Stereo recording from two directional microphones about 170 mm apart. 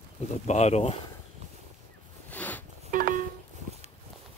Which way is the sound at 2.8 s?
55° right (ahead or behind).